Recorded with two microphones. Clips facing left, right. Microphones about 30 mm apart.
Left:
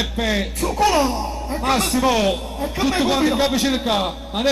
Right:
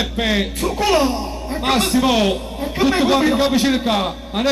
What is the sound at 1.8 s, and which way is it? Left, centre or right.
A man's voice, centre.